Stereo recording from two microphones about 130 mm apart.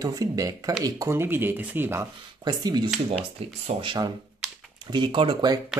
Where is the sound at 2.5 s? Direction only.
30° right (ahead or behind).